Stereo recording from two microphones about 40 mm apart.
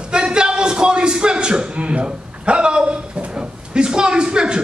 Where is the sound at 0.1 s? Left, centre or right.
Right.